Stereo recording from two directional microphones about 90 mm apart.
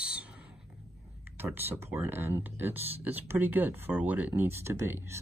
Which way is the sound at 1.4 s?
25° right (ahead or behind).